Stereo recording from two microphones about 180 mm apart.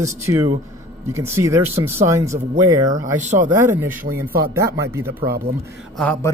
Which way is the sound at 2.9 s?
40° right (ahead or behind).